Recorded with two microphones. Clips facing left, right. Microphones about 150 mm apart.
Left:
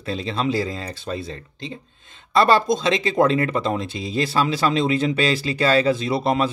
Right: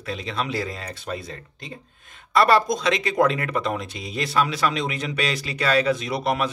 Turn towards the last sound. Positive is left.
turn(degrees=30)  # may be behind; listen again after turning